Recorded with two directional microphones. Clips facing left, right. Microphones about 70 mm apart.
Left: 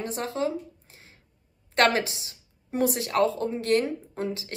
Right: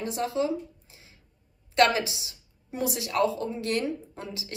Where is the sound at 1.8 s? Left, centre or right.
Left.